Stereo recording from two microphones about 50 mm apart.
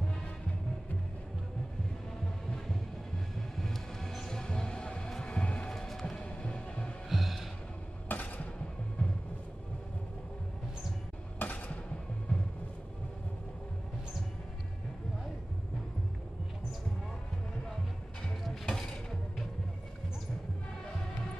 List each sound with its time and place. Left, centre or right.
3.3 s music: centre
7.1 s gasp: centre
8.1 s a sound: left
11.3 s a sound: left
12.3 s music: left
18.7 s music: centre